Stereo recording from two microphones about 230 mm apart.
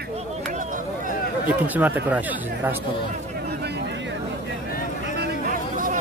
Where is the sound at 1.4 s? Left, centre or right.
Centre.